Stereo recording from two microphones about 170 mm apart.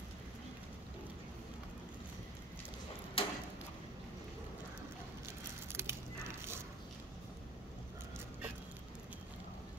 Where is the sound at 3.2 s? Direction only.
35° left (ahead or behind).